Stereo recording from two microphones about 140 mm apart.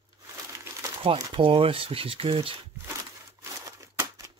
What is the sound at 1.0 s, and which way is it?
Speech, 35° right (ahead or behind).